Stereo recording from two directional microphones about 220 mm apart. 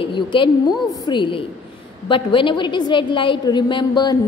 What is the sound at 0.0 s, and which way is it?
A woman's voice, 20° left (ahead or behind).